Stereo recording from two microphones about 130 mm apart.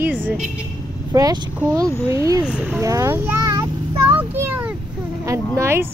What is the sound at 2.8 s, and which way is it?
Speech, 25° right (ahead or behind).